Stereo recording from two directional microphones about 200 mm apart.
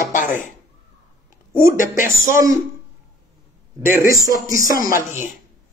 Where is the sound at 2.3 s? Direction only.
15° right (ahead or behind).